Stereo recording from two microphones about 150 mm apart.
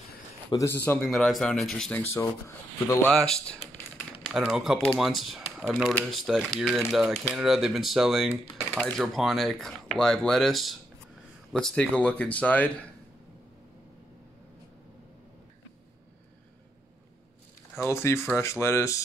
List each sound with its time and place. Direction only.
0.7 s speech: 15° left (ahead or behind)
3.1 s speech: 5° left (ahead or behind)
17.7 s speech: 20° left (ahead or behind)